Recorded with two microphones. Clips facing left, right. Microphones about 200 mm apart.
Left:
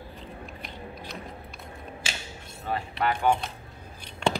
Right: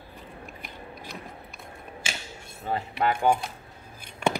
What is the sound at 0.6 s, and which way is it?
Gears, 50° right (ahead or behind).